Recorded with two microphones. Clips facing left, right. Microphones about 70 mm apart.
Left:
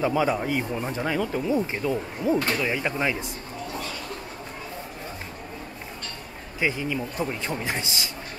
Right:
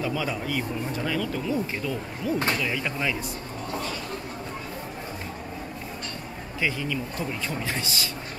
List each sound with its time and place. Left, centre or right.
0.0 s speech: left
6.6 s speech: left